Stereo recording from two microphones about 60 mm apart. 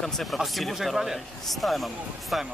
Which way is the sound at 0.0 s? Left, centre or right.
Centre.